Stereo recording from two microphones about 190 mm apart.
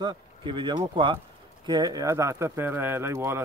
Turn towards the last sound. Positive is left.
turn(degrees=-15)  # may be behind; listen again after turning